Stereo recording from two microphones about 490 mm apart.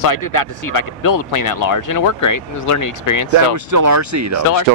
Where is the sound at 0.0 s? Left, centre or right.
Left.